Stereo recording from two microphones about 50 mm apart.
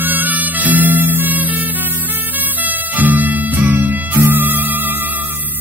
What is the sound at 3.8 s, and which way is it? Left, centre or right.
Music, right.